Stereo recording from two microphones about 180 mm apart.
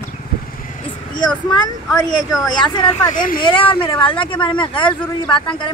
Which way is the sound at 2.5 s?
25° left (ahead or behind).